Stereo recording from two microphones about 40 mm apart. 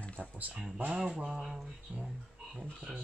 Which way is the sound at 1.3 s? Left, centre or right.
Centre.